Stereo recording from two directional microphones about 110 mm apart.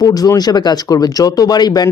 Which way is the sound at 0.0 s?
35° left (ahead or behind).